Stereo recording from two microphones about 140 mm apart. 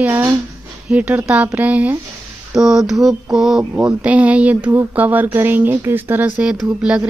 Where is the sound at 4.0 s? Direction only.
10° right (ahead or behind).